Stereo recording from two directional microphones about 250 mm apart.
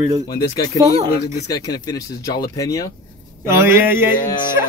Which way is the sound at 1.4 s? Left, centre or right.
Centre.